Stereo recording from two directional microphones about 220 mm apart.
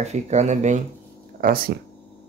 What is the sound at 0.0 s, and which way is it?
Speech, 30° right (ahead or behind).